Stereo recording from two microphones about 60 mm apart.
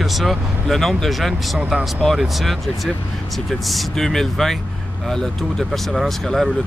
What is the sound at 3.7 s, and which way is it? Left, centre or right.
Speech, centre.